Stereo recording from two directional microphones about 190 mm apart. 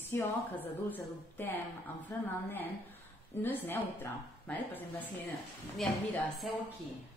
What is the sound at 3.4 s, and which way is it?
A woman's voice, 10° left (ahead or behind).